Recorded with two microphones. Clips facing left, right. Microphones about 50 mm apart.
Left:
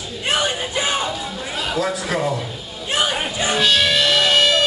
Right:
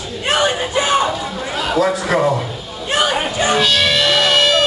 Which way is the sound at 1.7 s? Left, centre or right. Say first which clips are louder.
Right 7 dB; right.